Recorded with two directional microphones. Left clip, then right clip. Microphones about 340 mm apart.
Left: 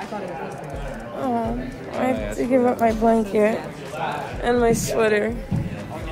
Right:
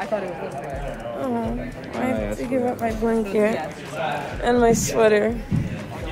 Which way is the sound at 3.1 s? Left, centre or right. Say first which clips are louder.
Left 2 dB; centre.